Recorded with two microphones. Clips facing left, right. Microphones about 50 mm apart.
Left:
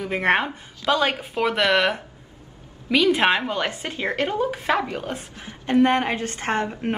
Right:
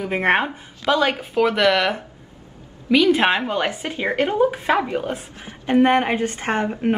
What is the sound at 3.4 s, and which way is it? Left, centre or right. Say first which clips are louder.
A woman's voice: right 3 dB; right.